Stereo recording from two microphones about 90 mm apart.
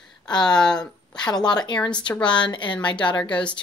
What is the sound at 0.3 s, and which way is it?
Speech, 55° left (ahead or behind).